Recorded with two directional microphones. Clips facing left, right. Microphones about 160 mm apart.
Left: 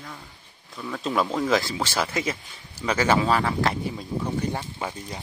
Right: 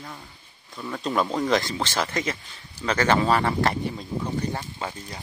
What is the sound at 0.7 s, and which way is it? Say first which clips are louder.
Speech: even; 5° right (ahead or behind).